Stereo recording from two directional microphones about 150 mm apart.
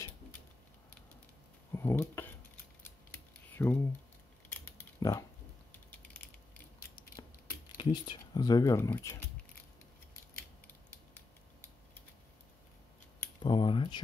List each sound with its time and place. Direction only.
1.7 s scissors: 15° left (ahead or behind)
4.5 s a sound: 15° left (ahead or behind)
5.7 s mechanisms: 10° left (ahead or behind)
7.7 s speech: 30° left (ahead or behind)
13.4 s speech: 30° left (ahead or behind)